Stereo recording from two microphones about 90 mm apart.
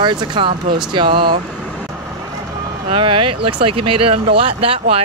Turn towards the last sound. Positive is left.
turn(degrees=-90)